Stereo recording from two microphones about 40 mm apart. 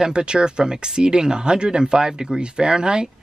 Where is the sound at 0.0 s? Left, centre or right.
Right.